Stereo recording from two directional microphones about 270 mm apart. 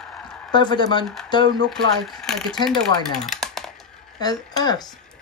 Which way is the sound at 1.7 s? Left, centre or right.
Centre.